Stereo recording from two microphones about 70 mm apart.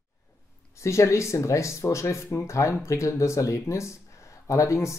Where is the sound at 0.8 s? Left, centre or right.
Left.